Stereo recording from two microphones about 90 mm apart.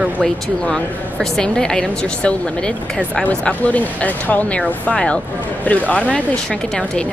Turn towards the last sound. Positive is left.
turn(degrees=15)  # may be behind; listen again after turning